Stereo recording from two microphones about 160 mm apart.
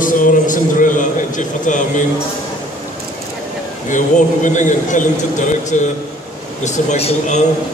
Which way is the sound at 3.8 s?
50° left (ahead or behind).